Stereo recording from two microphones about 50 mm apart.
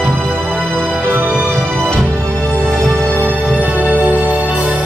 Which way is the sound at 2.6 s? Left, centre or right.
Centre.